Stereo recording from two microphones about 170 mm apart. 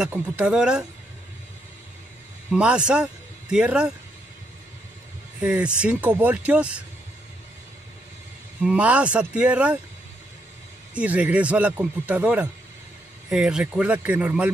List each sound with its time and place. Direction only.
0.0 s speech: 5° right (ahead or behind)
2.5 s speech: 5° right (ahead or behind)
5.4 s speech: 5° right (ahead or behind)
8.5 s speech: 5° right (ahead or behind)
11.0 s speech: 10° right (ahead or behind)